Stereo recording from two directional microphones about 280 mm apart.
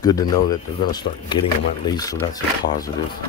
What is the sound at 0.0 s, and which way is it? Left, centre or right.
Speech, centre.